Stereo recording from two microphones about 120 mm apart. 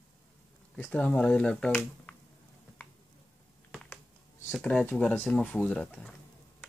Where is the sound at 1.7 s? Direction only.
15° left (ahead or behind).